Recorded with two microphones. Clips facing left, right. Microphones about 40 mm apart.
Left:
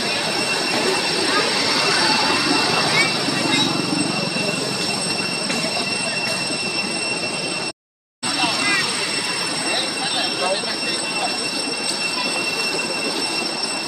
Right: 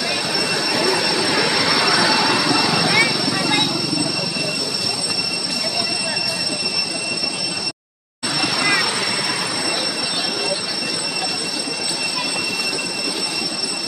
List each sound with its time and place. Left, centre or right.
1.4 s vehicle: right